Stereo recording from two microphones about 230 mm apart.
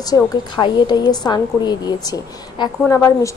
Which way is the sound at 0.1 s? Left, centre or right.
Centre.